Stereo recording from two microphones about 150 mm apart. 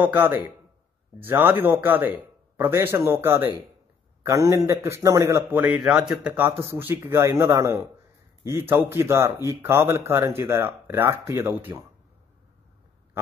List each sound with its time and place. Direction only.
0.0 s a man's voice: 15° right (ahead or behind)